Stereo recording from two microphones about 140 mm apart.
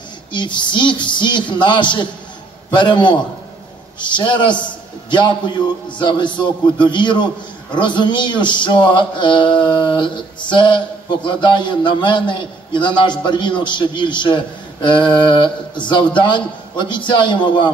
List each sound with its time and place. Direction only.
0.3 s a man's voice: 35° left (ahead or behind)